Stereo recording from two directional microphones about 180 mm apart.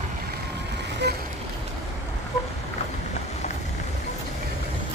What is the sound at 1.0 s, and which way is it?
Vehicle, 65° right (ahead or behind).